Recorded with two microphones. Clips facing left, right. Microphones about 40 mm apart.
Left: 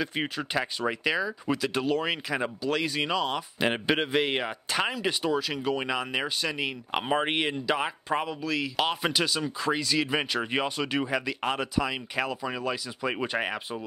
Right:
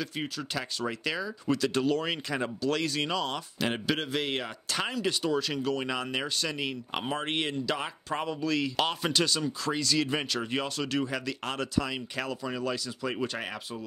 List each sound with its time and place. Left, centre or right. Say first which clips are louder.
0.0 s speech: left 4 dB; left
0.7 s speech: left 3 dB; centre
3.5 s speech: left 4 dB; left